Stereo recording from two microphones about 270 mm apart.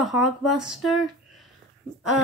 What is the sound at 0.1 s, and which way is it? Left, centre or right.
Speech, left.